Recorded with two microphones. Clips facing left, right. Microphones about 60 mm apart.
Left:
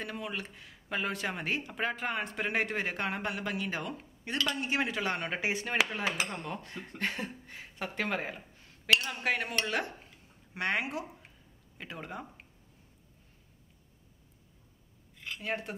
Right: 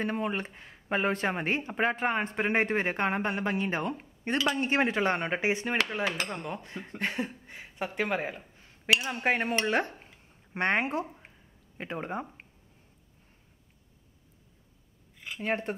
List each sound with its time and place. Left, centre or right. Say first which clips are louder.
0.0 s speech: right 7 dB; right
6.2 s speech: right 2 dB; centre
8.5 s a sound: right 1 dB; centre
9.2 s speech: right 4 dB; right
15.1 s dishes: right 1 dB; centre
15.4 s speech: right 6 dB; right